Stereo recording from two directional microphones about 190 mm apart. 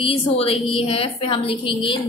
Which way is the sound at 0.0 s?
30° left (ahead or behind).